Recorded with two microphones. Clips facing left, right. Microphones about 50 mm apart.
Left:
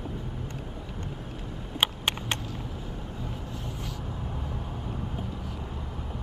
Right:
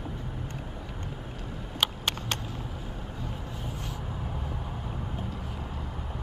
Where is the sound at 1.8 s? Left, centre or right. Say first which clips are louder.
Left 2 dB; left.